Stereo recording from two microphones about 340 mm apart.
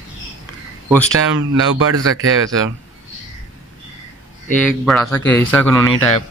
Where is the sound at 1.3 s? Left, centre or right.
Right.